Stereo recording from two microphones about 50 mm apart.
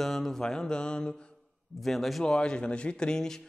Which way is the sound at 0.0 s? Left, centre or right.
Centre.